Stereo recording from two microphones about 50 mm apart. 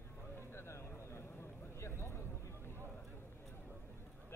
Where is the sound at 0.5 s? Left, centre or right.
Left.